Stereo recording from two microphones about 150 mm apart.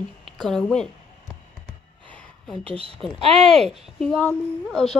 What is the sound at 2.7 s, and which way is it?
Speech, 40° right (ahead or behind).